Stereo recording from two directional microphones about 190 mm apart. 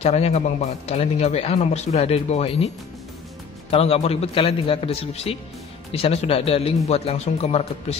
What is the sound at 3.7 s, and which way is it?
Speech, 30° left (ahead or behind).